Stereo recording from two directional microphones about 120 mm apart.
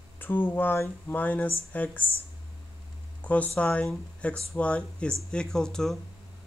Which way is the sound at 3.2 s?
10° left (ahead or behind).